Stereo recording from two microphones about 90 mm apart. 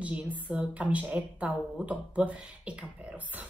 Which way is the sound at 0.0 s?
15° right (ahead or behind).